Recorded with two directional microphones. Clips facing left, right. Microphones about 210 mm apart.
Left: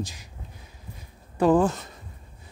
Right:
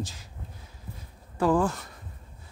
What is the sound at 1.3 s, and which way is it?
Speech, 20° left (ahead or behind).